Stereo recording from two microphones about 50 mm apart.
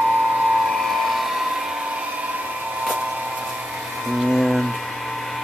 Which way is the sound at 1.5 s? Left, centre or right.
Centre.